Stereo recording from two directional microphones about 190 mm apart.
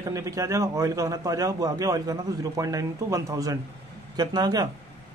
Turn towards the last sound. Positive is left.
turn(degrees=-20)  # may be behind; listen again after turning